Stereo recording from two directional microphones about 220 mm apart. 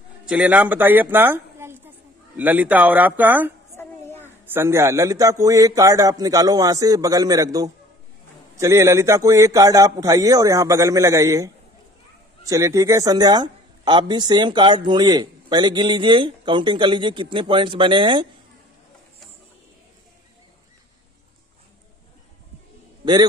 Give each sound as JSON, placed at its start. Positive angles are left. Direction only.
{"t": 0.2, "sound": "a man's voice", "side_deg": -5}
{"t": 3.7, "sound": "a sound", "side_deg": 10}
{"t": 4.5, "sound": "a man's voice", "side_deg": -10}